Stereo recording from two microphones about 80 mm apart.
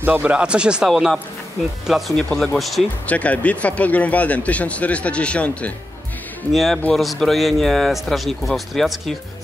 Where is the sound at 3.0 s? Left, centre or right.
Centre.